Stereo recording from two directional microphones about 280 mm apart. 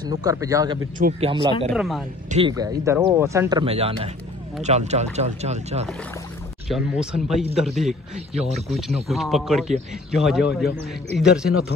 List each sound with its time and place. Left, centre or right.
0.0 s speech: centre
0.9 s speech: right
1.7 s a man's voice: centre
2.3 s speech: centre
6.7 s a man's voice: centre